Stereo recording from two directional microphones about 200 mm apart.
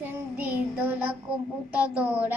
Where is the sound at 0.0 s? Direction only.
10° right (ahead or behind).